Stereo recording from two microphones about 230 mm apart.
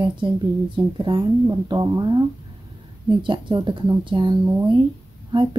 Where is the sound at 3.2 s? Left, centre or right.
Right.